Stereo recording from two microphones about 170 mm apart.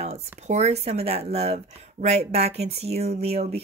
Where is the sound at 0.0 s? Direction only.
40° right (ahead or behind).